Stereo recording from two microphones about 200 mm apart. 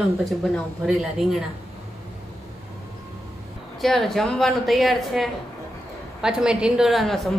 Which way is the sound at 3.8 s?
Centre (ahead or behind).